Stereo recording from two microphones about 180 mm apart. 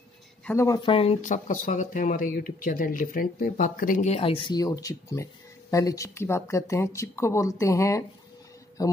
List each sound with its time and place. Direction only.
0.5 s speech: 15° left (ahead or behind)
1.2 s speech: 45° left (ahead or behind); by 8.9 s 20° left (ahead or behind)